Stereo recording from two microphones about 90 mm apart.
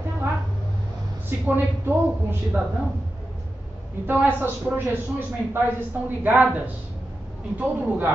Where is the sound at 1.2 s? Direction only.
25° right (ahead or behind).